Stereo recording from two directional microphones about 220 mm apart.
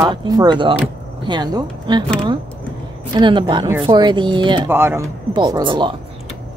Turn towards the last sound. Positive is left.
turn(degrees=-20)  # may be behind; listen again after turning